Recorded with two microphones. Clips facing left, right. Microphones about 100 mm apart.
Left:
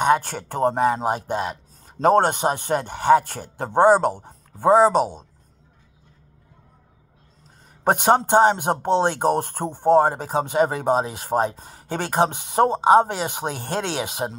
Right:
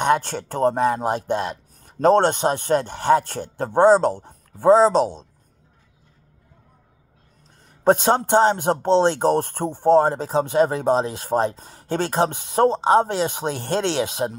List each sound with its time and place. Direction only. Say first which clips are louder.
0.0 s a man's voice: even; 5° left (ahead or behind)
7.8 s a man's voice: right 1 dB; 15° left (ahead or behind)